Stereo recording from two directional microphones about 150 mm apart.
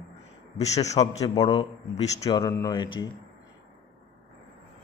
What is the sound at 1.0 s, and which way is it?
Speech, 25° left (ahead or behind).